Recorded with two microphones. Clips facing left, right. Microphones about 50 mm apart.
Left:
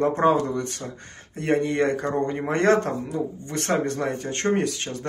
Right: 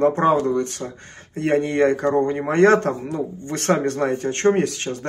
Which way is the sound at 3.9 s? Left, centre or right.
Right.